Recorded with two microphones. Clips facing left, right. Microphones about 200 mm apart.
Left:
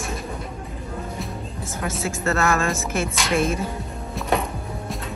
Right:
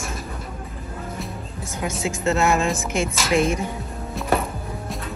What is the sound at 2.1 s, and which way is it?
Speech, 15° right (ahead or behind).